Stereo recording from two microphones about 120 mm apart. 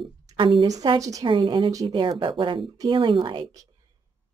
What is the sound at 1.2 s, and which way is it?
Speech, 45° right (ahead or behind).